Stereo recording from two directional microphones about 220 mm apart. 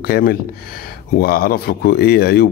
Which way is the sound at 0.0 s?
40° left (ahead or behind).